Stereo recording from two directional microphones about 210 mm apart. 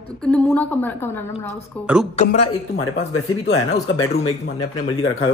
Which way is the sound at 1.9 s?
5° right (ahead or behind).